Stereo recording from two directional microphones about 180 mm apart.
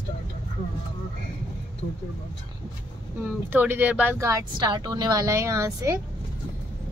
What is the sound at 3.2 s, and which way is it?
Speech, 10° right (ahead or behind).